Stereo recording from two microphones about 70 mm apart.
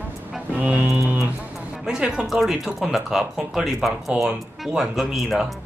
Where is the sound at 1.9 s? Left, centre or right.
Centre.